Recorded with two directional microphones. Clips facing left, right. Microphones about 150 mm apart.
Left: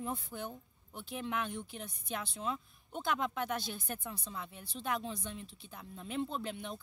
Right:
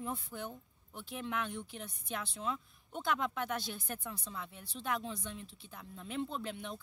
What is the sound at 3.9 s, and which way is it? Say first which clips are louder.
Speech: left 1 dB; 15° left (ahead or behind).